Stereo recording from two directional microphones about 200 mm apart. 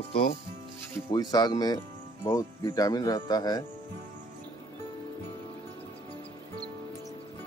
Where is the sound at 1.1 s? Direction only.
20° left (ahead or behind).